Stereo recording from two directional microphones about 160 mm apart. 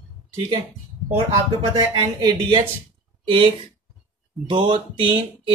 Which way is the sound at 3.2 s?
35° right (ahead or behind).